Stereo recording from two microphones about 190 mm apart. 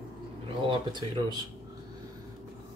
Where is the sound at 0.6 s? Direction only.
25° right (ahead or behind).